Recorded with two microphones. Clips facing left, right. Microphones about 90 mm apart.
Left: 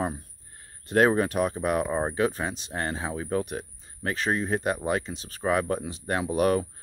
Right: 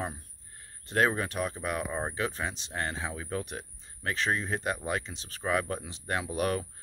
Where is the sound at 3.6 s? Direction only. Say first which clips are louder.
Left 5 dB; 35° left (ahead or behind).